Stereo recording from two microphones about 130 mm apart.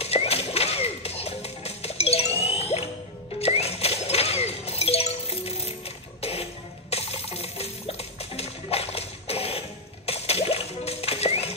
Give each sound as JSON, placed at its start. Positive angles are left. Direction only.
{"t": 0.0, "sound": "music", "side_deg": 50}
{"t": 3.3, "sound": "a sound", "side_deg": 50}
{"t": 6.2, "sound": "cough", "side_deg": 50}
{"t": 6.9, "sound": "music", "side_deg": 50}